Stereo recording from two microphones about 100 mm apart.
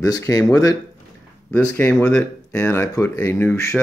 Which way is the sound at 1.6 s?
20° left (ahead or behind).